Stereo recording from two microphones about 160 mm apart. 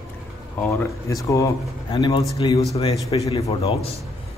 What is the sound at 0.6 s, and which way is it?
Speech, 15° left (ahead or behind).